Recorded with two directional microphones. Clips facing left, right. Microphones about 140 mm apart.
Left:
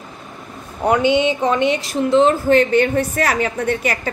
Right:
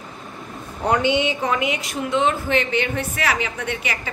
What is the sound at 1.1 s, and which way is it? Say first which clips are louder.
A woman's voice: left 5 dB; 20° left (ahead or behind).